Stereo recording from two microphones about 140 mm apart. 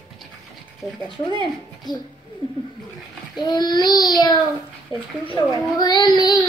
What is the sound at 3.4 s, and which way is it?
A child's voice, 25° left (ahead or behind).